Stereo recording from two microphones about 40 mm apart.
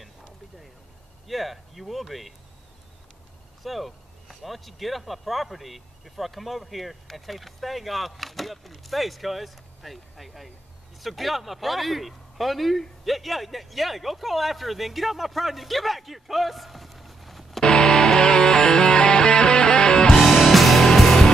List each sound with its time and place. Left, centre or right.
0.0 s a sound: centre
1.2 s speech: centre
3.6 s speech: centre
17.6 s music: centre
20.2 s music: centre